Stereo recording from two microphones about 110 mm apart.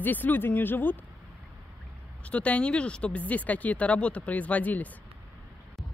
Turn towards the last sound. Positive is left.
turn(degrees=15)  # may be behind; listen again after turning